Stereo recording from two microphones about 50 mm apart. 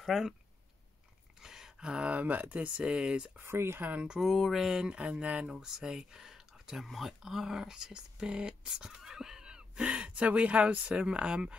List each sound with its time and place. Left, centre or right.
0.0 s speech: centre
1.4 s speech: centre
3.4 s speech: right
3.8 s speech: right
4.2 s a sound: centre
4.8 s speech: right
5.5 s speech: centre
9.8 s speech: right